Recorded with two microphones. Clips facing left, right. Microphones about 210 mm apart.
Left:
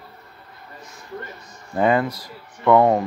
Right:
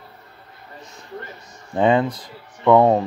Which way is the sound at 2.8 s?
30° right (ahead or behind).